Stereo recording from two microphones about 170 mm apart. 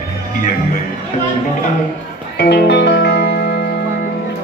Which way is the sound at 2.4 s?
80° left.